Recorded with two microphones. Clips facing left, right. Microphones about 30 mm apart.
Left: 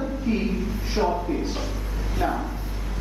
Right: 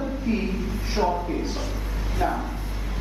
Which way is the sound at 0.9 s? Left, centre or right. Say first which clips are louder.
Even; centre.